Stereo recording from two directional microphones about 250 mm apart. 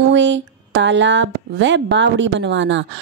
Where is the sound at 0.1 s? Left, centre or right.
Right.